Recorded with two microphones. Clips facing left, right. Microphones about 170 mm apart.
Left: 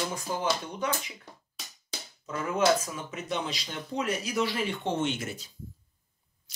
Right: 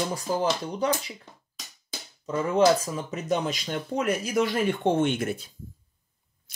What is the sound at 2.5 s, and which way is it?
Speech, 35° right (ahead or behind).